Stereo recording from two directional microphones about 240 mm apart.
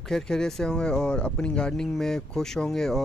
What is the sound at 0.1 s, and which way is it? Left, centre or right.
Speech, centre.